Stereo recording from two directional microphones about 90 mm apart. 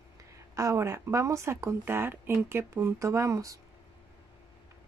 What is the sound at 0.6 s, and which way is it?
A woman's voice, 35° right (ahead or behind).